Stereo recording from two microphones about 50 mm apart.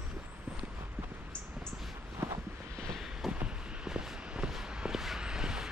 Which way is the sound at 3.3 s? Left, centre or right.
Centre.